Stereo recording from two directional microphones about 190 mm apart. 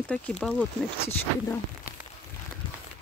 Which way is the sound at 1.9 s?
50° left (ahead or behind).